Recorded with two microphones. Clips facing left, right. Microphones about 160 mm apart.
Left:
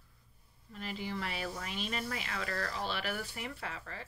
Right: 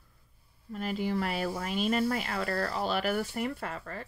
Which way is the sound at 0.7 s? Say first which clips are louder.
Right 8 dB; 45° right (ahead or behind).